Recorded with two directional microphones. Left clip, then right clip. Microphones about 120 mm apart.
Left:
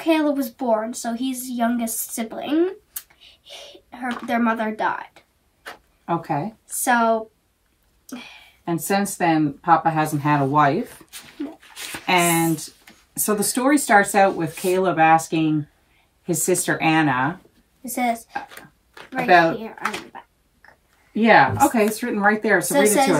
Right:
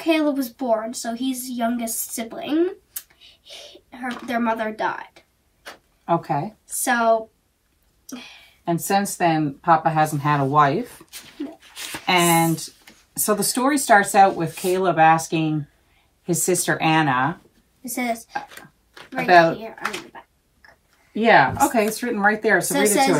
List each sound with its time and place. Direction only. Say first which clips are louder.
0.0 s speech: left 1 dB; 15° left (ahead or behind)
6.0 s a woman's voice: right 2 dB; 5° right (ahead or behind)
6.7 s speech: even; 15° left (ahead or behind)
8.6 s a woman's voice: right 1 dB; 5° right (ahead or behind)
17.8 s speech: left 3 dB; 20° left (ahead or behind)
18.5 s a sound: even; 10° left (ahead or behind)
19.6 s speech: left 1 dB; 20° left (ahead or behind)
21.1 s a woman's voice: left 1 dB; centre (ahead or behind)